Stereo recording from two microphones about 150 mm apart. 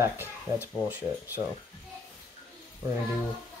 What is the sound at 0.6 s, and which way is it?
Speech, 15° right (ahead or behind).